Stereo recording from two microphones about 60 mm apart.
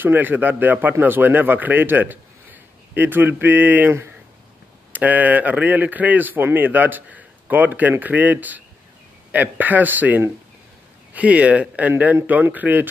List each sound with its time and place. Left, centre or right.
0.0 s speech: right
4.9 s speech: right